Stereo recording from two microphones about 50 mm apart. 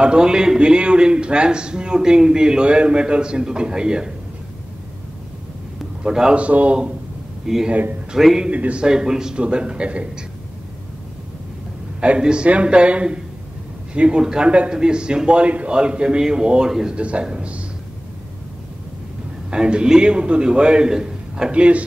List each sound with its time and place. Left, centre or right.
0.0 s a man's voice: centre
6.0 s a man's voice: centre
6.3 s a man's voice: right
7.4 s a man's voice: centre
7.7 s speech: right
8.5 s a man's voice: right
8.8 s a man's voice: centre
12.0 s a man's voice: centre
19.5 s a man's voice: centre
21.5 s a man's voice: right